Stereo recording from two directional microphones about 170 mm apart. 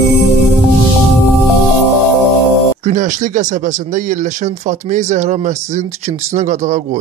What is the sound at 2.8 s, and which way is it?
Speech, 45° right (ahead or behind).